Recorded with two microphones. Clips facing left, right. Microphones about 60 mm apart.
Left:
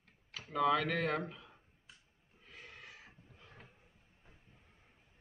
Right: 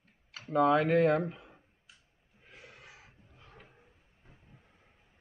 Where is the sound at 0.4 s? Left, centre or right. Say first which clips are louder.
Right 6 dB; right.